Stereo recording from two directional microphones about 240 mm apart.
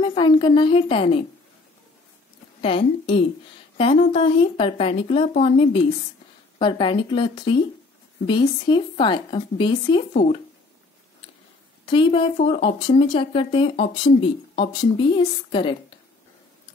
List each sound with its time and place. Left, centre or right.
0.0 s speech: centre
2.6 s speech: left
10.1 s speech: left
11.8 s speech: left